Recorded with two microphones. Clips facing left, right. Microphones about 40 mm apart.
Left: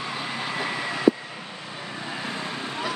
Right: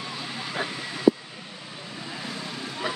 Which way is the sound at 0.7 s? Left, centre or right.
Left.